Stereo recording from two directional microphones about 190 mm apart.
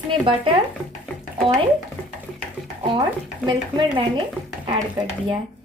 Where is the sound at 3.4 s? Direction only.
25° right (ahead or behind).